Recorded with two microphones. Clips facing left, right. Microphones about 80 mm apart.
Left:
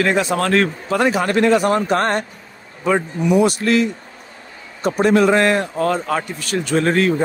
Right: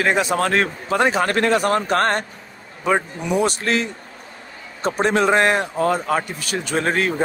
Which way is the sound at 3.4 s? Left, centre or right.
Right.